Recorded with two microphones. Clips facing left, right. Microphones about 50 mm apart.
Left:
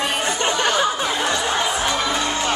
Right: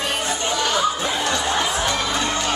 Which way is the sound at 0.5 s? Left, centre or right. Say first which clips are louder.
Even; left.